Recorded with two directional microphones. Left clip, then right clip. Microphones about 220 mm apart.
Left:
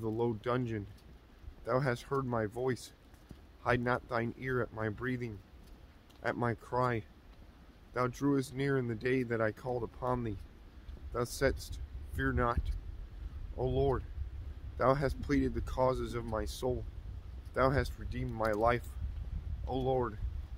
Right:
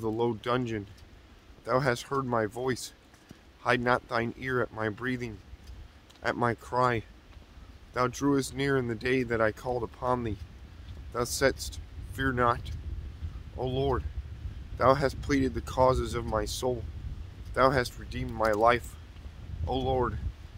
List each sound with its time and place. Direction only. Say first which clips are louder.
0.2 s speech: right 4 dB; 10° right (ahead or behind)